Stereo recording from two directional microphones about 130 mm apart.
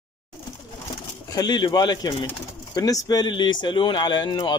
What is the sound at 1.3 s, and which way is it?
Speech, 30° left (ahead or behind).